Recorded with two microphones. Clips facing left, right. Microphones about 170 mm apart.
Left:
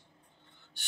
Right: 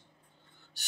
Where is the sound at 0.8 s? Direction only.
40° right (ahead or behind).